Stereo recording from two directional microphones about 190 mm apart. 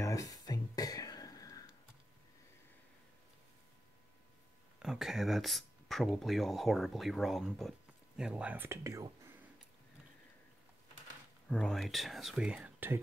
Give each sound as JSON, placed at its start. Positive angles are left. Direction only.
{"t": 0.0, "sound": "a sound", "side_deg": 20}
{"t": 4.7, "sound": "speech", "side_deg": 0}
{"t": 11.4, "sound": "speech", "side_deg": 5}